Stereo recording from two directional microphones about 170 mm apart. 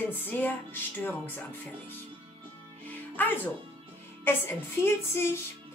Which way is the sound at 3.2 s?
10° left (ahead or behind).